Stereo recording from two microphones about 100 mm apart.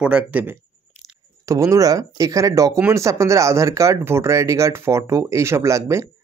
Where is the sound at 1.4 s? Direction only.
35° right (ahead or behind).